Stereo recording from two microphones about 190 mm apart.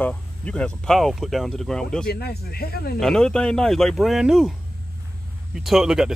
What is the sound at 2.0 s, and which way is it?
Speech, 55° left (ahead or behind).